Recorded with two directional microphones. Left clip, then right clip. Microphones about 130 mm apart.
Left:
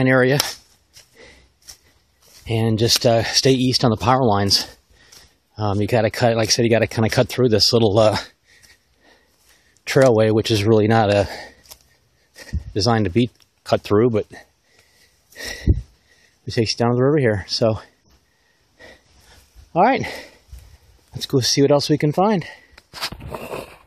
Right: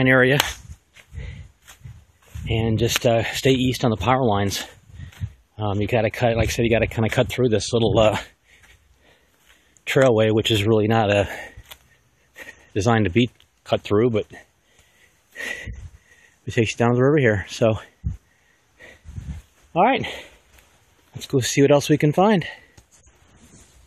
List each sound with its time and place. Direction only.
0.0 s speech: 20° left (ahead or behind)
0.9 s a sound: 25° left (ahead or behind)
2.4 s speech: 30° left (ahead or behind)
9.8 s speech: 25° left (ahead or behind)
11.2 s speech: 15° left (ahead or behind)
13.7 s speech: 35° left (ahead or behind)
15.3 s a sound: 10° left (ahead or behind)
16.5 s speech: 5° left (ahead or behind)
19.7 s speech: 30° left (ahead or behind)
21.5 s speech: 5° left (ahead or behind)